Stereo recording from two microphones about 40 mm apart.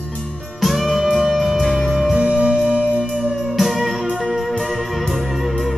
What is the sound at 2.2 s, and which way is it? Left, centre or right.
Music, right.